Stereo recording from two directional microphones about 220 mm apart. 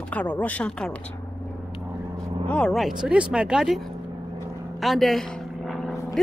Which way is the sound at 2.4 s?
5° left (ahead or behind).